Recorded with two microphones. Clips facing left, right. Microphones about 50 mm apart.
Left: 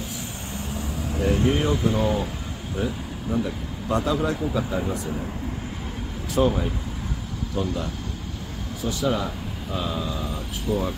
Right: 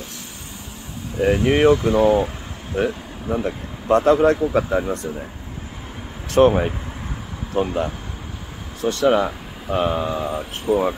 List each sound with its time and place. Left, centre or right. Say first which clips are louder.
1.3 s speech: right 8 dB; right
2.0 s speech: right 8 dB; right
2.8 s speech: right 6 dB; right
6.3 s speech: right 7 dB; right
7.5 s speech: right 7 dB; right
8.8 s speech: right 8 dB; right